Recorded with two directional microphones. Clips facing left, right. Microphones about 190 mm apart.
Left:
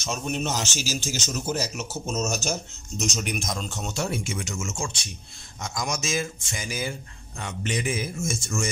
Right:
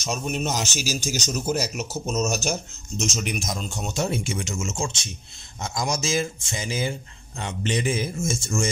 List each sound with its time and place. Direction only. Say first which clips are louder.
0.0 s speech: right 1 dB; 10° right (ahead or behind)
3.0 s speech: right 1 dB; centre (ahead or behind); by 8.6 s 30° right (ahead or behind)